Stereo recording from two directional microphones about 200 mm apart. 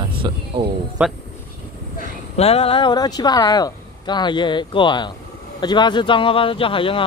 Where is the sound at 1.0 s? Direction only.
10° right (ahead or behind).